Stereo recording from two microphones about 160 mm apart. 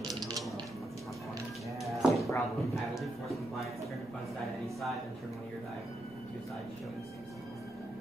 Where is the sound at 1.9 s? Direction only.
Centre (ahead or behind).